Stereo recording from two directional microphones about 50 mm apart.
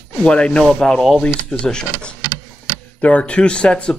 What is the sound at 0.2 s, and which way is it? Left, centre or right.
Speech, centre.